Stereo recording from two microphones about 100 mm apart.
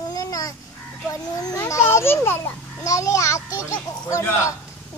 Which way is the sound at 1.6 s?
30° left (ahead or behind).